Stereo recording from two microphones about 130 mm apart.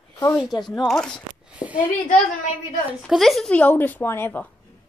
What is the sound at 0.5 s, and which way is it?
Speech, 30° left (ahead or behind).